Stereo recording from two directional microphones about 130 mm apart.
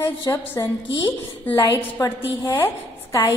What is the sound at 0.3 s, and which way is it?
A woman's voice, 20° left (ahead or behind).